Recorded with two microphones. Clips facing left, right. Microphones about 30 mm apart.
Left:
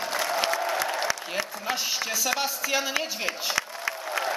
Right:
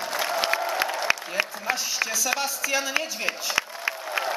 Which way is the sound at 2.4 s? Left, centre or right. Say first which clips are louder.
Right 1 dB; centre.